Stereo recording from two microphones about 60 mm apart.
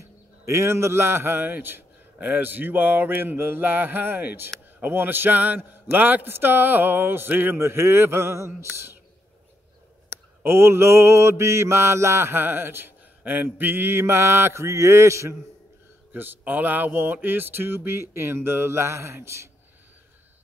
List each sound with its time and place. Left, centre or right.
0.5 s a man's voice: right
7.6 s mantra: right
10.0 s mantra: right
16.1 s a man's voice: right